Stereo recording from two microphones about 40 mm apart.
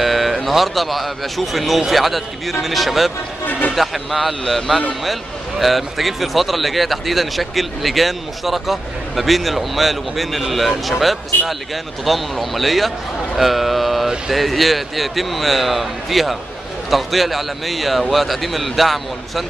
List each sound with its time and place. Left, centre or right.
0.0 s speech: centre
3.4 s a sound: left
3.7 s speech: centre
5.6 s speech: centre